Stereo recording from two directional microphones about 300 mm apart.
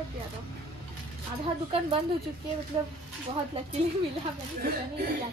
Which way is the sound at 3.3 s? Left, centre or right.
Centre.